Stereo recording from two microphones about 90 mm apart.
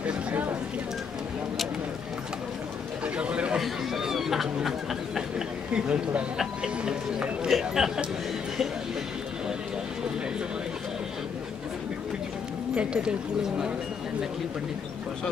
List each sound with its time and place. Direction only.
0.0 s a sound: 15° right (ahead or behind)
3.2 s chatter: 10° right (ahead or behind)
5.7 s speech: 10° right (ahead or behind)
12.7 s speech: 10° right (ahead or behind)